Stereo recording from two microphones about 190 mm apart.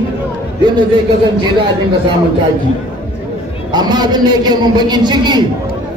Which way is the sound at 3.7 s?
20° right (ahead or behind).